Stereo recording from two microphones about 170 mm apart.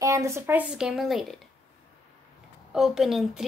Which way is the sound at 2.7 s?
Centre (ahead or behind).